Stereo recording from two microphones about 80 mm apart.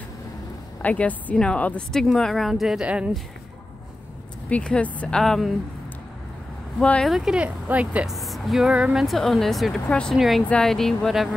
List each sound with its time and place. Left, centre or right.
0.8 s speech: centre
2.1 s speech: centre
4.5 s speech: centre
6.8 s speech: centre
7.1 s speech: centre
8.1 s speech: centre
9.0 s speech: centre